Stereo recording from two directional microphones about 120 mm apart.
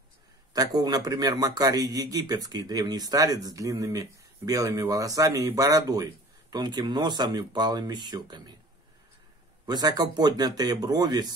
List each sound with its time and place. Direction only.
0.5 s a man's voice: 30° right (ahead or behind)
9.7 s a man's voice: 30° right (ahead or behind)